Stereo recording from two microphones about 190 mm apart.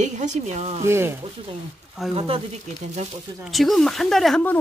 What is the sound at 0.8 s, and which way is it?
Speech, 15° right (ahead or behind).